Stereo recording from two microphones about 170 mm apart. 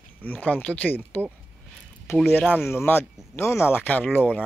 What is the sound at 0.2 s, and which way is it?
Speech, 10° left (ahead or behind).